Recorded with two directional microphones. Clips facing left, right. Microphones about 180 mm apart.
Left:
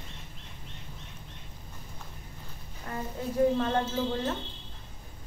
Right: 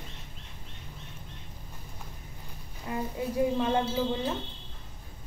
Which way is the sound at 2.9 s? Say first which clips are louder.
Right 3 dB; 10° right (ahead or behind).